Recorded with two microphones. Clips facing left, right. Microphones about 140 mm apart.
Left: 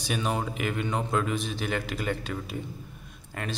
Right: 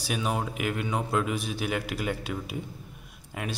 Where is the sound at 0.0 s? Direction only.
5° right (ahead or behind).